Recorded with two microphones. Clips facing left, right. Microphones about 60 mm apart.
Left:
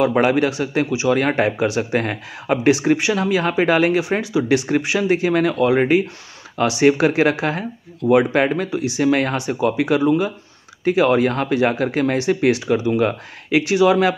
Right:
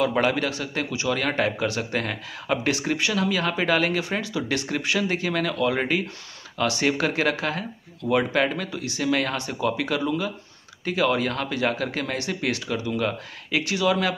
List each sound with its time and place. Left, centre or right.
0.0 s speech: left
9.0 s speech: left